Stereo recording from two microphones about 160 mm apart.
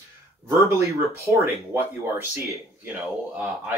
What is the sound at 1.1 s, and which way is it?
Speech, 15° right (ahead or behind).